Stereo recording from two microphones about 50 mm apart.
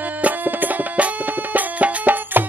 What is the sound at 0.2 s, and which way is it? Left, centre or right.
Music, right.